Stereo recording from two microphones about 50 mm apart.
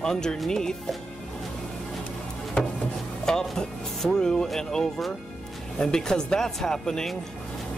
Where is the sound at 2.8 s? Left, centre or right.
Centre.